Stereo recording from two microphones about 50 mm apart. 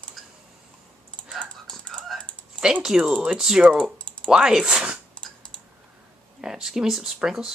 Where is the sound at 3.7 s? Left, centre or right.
Centre.